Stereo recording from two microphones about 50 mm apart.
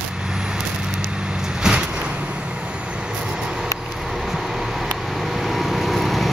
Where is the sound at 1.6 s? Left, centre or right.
Centre.